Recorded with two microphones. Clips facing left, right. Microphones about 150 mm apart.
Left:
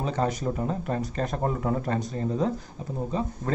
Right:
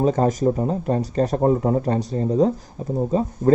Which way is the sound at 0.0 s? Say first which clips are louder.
Right 8 dB; 40° right (ahead or behind).